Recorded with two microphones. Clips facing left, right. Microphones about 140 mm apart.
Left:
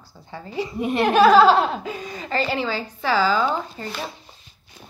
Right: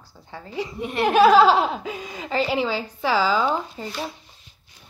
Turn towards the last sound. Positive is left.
turn(degrees=0)  # may be behind; listen again after turning